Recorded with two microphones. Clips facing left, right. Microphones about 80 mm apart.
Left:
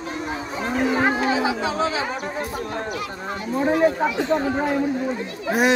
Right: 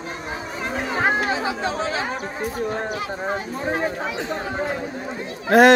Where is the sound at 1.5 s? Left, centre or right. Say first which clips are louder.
Left 1 dB; centre.